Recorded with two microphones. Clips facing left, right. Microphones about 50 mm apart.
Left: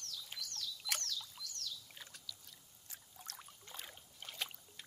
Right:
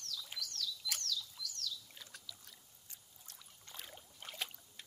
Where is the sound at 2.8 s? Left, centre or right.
Left.